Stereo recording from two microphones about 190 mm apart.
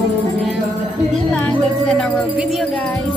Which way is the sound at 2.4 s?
Centre (ahead or behind).